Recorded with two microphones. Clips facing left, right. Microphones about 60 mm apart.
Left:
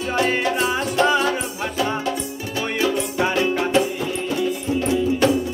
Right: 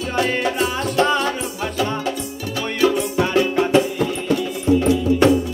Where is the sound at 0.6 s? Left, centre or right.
Left.